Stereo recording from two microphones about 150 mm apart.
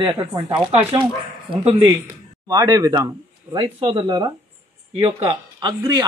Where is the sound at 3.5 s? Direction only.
40° right (ahead or behind).